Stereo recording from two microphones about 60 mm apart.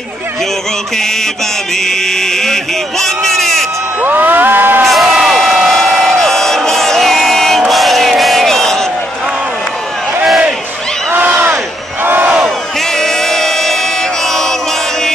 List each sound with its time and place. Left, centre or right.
0.9 s mantra: centre
1.8 s speech: centre
4.0 s crowd: right
4.8 s crowd: centre
11.1 s a sound: right
11.5 s battle cry: right
12.8 s music: centre